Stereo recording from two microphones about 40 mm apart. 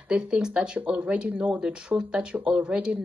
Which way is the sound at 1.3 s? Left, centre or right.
Right.